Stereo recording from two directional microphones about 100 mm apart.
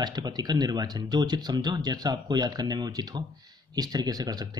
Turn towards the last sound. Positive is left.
turn(degrees=-40)  # may be behind; listen again after turning